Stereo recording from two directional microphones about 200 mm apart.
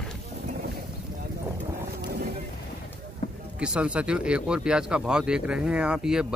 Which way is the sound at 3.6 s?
5° right (ahead or behind).